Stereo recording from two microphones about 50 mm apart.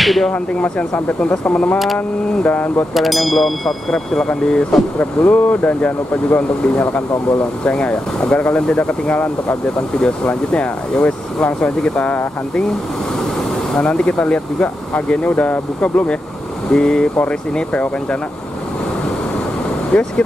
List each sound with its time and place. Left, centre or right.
0.0 s speech: centre
0.3 s speech: left
2.9 s speech: centre
4.9 s speech: left
7.6 s speech: left
13.7 s speech: centre
19.9 s speech: left